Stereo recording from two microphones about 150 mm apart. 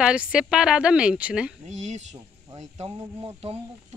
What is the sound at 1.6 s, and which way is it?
Speech, 50° right (ahead or behind).